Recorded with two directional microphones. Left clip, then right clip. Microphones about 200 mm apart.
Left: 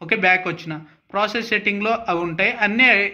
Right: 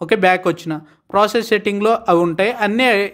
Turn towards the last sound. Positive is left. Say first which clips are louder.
# even
turn(degrees=-45)  # may be behind; listen again after turning